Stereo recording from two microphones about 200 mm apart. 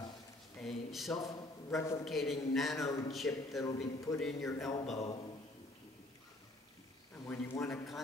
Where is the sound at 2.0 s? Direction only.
Centre (ahead or behind).